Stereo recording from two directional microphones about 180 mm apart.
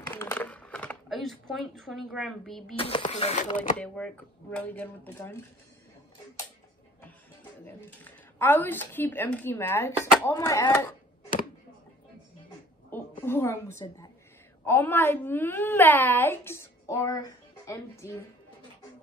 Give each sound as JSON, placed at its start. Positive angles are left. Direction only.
{"t": 0.1, "sound": "a sound", "side_deg": 10}
{"t": 1.0, "sound": "speech", "side_deg": 0}
{"t": 2.7, "sound": "speech", "side_deg": 30}
{"t": 3.7, "sound": "a child's voice", "side_deg": 5}
{"t": 7.6, "sound": "a child's voice", "side_deg": 10}
{"t": 13.2, "sound": "a child's voice", "side_deg": 15}